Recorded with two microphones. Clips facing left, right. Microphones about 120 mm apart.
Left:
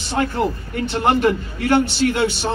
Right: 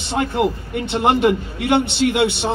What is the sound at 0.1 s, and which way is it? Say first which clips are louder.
A man's voice: right 1 dB; 20° right (ahead or behind).